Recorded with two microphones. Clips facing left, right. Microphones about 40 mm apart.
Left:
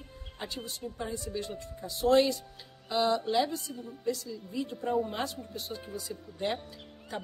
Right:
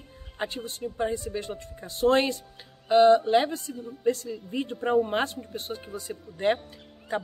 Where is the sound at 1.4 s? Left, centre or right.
Right.